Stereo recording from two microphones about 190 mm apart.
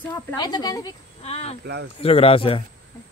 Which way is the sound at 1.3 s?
35° left (ahead or behind).